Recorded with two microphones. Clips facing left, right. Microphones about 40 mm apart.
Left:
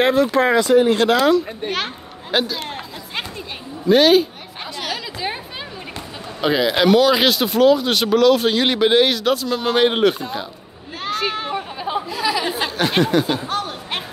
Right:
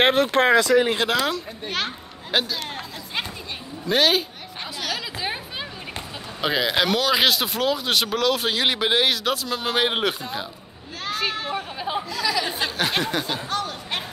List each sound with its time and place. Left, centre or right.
0.0 s speech: right
0.9 s speech: centre
3.8 s speech: centre
4.7 s a sound: centre
6.4 s speech: centre
12.1 s speech: centre
12.4 s speech: centre
13.5 s a sound: centre